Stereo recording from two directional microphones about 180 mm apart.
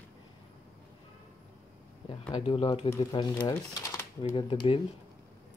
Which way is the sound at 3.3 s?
20° left (ahead or behind).